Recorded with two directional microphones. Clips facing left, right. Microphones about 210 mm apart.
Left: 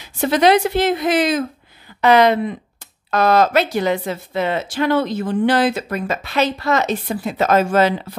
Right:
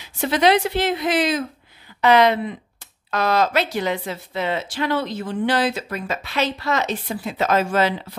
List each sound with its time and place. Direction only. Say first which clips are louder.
0.2 s speech: left 3 dB; 45° left (ahead or behind)